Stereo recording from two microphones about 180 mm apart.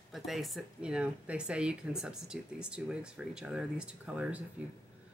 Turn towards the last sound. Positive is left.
turn(degrees=-5)  # may be behind; listen again after turning